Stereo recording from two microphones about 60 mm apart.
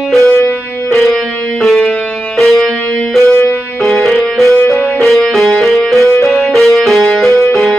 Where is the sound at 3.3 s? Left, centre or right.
Left.